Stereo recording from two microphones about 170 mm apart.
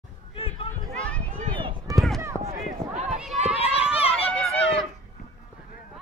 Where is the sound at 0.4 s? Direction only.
35° left (ahead or behind).